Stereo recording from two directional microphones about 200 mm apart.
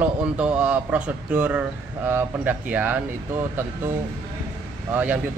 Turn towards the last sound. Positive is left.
turn(degrees=-10)  # may be behind; listen again after turning